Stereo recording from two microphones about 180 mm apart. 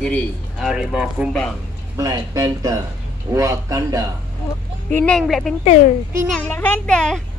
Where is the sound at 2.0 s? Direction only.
20° right (ahead or behind).